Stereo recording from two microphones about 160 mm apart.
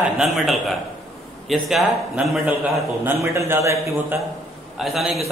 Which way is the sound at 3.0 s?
20° right (ahead or behind).